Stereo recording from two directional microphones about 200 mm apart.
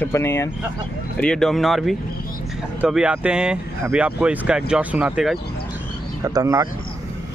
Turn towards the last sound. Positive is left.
turn(degrees=-15)  # may be behind; listen again after turning